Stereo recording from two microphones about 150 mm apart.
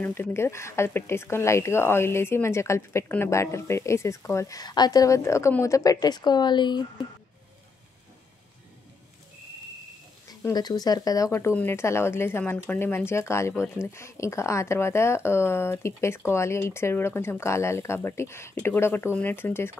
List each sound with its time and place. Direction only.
0.0 s speech: 15° left (ahead or behind); by 6.9 s 30° left (ahead or behind)
10.4 s speech: 25° left (ahead or behind)